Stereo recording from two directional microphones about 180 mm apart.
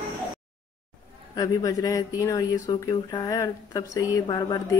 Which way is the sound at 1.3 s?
20° left (ahead or behind).